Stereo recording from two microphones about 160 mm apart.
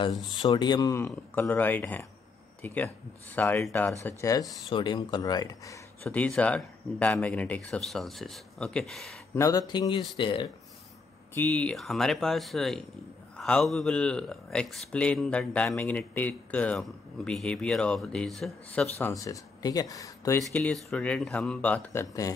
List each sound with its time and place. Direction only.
0.3 s speech: 30° left (ahead or behind)
4.6 s speech: 30° left (ahead or behind)
6.0 s speech: 5° left (ahead or behind)
9.3 s speech: 20° left (ahead or behind)
11.3 s speech: 10° left (ahead or behind)
19.2 s speech: 20° left (ahead or behind)
20.5 s speech: 5° left (ahead or behind)